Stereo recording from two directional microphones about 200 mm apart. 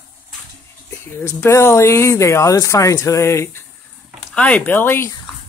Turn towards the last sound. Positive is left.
turn(degrees=10)  # may be behind; listen again after turning